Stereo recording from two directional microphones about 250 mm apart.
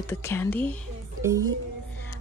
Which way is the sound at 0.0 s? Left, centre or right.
Centre.